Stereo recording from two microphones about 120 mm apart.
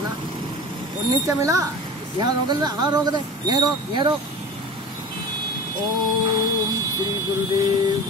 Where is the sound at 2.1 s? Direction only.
40° right (ahead or behind).